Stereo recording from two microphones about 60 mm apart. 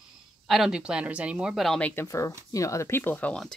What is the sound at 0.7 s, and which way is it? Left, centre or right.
Speech, centre.